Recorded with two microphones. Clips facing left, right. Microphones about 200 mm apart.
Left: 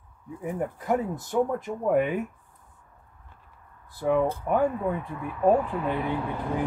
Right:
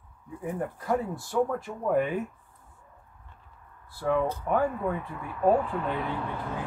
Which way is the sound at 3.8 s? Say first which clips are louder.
Left 3 dB; 15° left (ahead or behind).